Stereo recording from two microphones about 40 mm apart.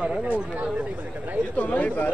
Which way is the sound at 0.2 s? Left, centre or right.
Right.